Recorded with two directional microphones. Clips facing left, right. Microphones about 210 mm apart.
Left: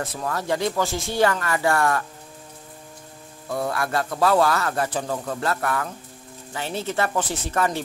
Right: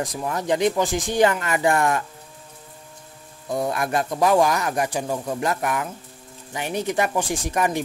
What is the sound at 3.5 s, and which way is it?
Speech, 20° right (ahead or behind).